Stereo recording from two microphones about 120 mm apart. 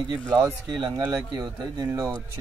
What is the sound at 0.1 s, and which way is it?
Speech, 30° right (ahead or behind).